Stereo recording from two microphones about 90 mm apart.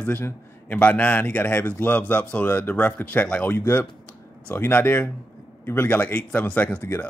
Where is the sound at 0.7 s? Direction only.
15° left (ahead or behind).